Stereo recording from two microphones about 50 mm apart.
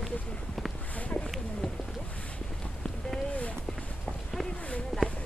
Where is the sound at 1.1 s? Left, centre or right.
Left.